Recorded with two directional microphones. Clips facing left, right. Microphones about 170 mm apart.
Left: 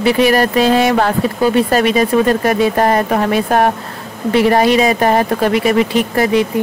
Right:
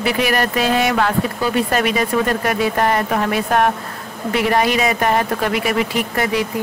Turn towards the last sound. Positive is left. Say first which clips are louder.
# left 6 dB
turn(degrees=25)  # may be behind; listen again after turning